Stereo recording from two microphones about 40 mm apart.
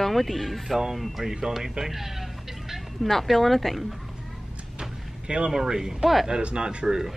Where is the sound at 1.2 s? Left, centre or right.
Centre.